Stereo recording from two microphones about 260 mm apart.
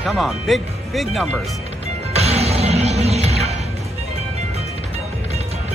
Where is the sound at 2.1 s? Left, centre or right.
Right.